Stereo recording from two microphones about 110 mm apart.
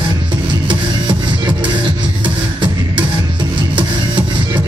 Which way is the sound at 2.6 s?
45° right (ahead or behind).